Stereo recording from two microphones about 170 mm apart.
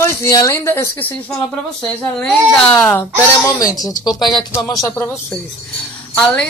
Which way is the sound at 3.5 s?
20° left (ahead or behind).